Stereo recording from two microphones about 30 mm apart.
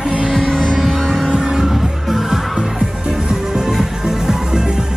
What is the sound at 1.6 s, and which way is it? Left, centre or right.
Music, centre.